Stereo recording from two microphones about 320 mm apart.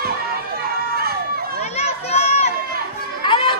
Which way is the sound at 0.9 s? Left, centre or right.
Right.